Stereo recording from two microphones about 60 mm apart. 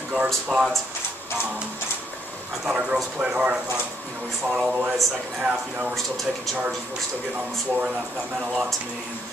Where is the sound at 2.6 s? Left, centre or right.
Centre.